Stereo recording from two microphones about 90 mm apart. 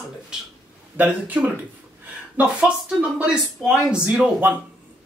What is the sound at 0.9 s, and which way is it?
Speech, 15° right (ahead or behind).